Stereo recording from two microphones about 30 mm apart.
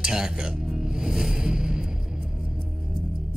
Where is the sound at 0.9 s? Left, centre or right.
Centre.